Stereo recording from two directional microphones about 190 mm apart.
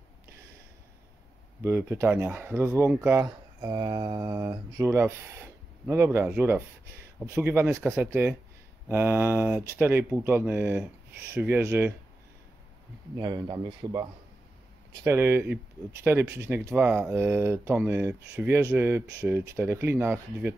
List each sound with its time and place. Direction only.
1.6 s speech: 10° right (ahead or behind)
13.2 s speech: 20° right (ahead or behind)